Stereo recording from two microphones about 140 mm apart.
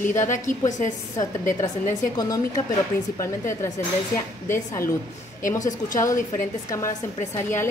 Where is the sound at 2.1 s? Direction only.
25° left (ahead or behind).